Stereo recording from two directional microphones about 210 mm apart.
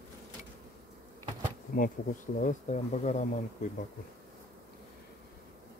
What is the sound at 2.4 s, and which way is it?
Speech, 35° left (ahead or behind).